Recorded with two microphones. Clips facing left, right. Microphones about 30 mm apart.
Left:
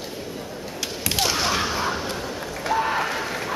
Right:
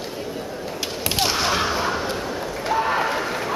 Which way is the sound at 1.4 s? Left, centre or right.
Centre.